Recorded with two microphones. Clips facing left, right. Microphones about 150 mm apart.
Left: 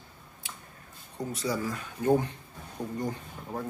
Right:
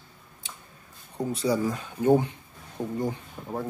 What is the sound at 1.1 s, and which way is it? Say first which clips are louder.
Speech: right 6 dB; 15° right (ahead or behind).